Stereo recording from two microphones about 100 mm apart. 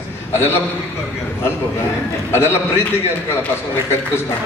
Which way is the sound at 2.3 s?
25° left (ahead or behind).